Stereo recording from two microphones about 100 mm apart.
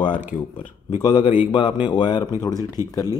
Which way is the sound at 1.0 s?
45° left (ahead or behind).